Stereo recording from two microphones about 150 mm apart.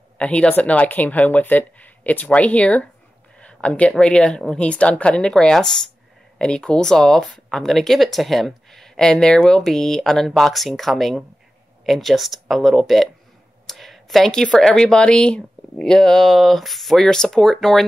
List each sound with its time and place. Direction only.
0.2 s speech: 10° left (ahead or behind)